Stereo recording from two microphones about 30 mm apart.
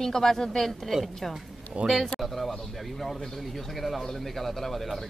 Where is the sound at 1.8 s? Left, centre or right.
Right.